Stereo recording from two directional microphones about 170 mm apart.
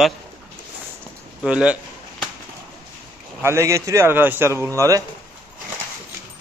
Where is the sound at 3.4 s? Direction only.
15° right (ahead or behind).